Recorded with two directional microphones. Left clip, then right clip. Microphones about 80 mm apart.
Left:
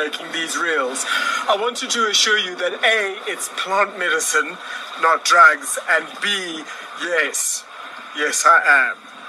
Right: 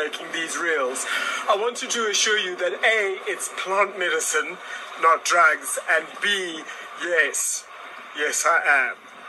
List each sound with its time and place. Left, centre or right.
0.0 s a man's voice: centre